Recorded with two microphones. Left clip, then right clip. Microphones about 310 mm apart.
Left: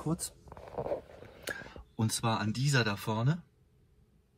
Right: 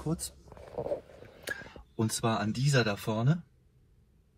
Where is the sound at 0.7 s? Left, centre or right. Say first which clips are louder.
Right 1 dB; centre.